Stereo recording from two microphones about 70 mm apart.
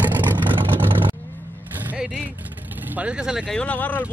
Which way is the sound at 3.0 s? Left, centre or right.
Centre.